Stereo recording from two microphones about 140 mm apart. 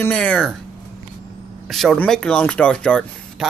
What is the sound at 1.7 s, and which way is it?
Speech, centre (ahead or behind).